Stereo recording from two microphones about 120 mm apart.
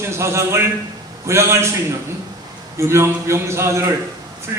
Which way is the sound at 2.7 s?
25° right (ahead or behind).